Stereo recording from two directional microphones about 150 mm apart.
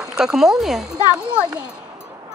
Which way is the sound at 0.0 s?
5° right (ahead or behind).